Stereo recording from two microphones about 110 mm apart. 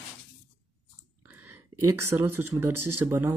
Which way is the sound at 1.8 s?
25° right (ahead or behind).